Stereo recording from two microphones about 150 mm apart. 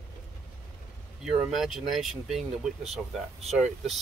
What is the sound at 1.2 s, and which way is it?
Speech, centre (ahead or behind).